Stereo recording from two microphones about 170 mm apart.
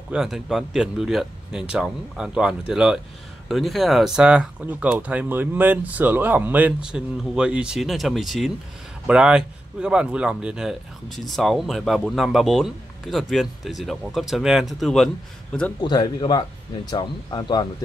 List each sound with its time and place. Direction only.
0.1 s speech: 5° right (ahead or behind)
15.8 s speech: 25° left (ahead or behind)